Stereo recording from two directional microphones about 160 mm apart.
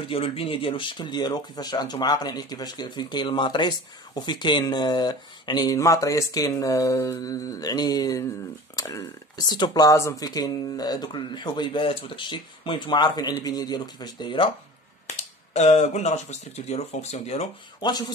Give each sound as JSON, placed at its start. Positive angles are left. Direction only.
{"t": 0.1, "sound": "speech", "side_deg": 35}
{"t": 15.5, "sound": "speech", "side_deg": 45}
{"t": 17.7, "sound": "dishes", "side_deg": 25}